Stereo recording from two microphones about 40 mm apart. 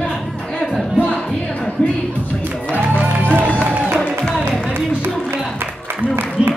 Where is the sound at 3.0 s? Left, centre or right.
Right.